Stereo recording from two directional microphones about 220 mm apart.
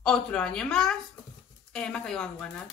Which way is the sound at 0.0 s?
5° left (ahead or behind).